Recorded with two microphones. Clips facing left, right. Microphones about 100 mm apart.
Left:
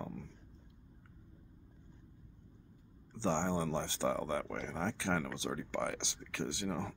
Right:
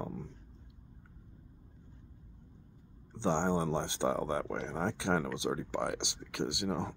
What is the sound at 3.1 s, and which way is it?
Speech, 20° right (ahead or behind).